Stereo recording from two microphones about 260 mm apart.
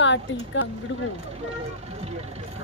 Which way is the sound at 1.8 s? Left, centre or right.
Right.